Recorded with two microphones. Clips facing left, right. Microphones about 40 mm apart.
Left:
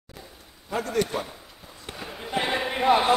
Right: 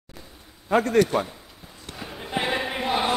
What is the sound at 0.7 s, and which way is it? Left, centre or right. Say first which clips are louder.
Speech: right 7 dB; right.